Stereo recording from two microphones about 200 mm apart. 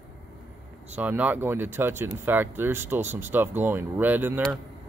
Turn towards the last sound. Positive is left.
turn(degrees=-10)  # may be behind; listen again after turning